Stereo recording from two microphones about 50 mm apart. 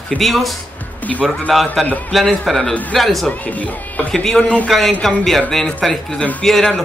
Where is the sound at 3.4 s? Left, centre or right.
Left.